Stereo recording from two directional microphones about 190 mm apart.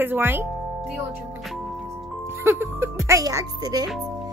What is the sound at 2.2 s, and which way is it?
Speech, 15° right (ahead or behind).